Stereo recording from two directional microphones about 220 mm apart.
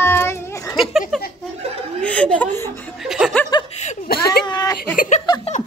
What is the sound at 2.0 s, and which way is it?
Speech, 5° left (ahead or behind).